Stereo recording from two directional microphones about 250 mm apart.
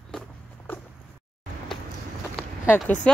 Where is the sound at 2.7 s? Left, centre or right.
Centre.